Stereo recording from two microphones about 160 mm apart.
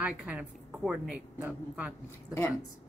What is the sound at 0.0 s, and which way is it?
A woman's voice, 5° right (ahead or behind).